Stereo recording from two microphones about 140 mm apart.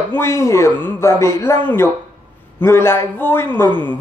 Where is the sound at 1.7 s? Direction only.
15° left (ahead or behind).